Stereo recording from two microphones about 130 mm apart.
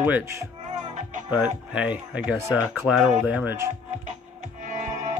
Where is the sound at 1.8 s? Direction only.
10° right (ahead or behind).